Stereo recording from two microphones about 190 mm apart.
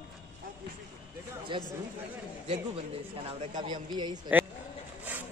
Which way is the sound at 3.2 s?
25° right (ahead or behind).